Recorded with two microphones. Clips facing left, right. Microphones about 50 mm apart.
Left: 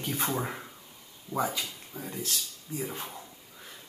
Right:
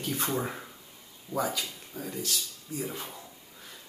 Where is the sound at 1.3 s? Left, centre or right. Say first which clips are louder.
Even; centre.